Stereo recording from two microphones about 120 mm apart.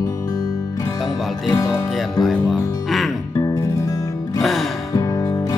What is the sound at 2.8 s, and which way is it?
Music, centre (ahead or behind).